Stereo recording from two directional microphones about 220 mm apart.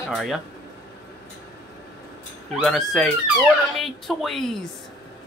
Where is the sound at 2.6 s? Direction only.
Centre (ahead or behind).